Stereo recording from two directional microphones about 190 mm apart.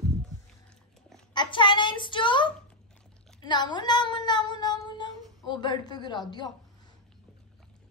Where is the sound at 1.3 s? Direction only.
25° left (ahead or behind).